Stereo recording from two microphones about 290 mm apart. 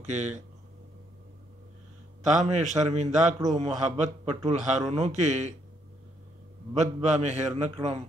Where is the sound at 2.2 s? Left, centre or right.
Right.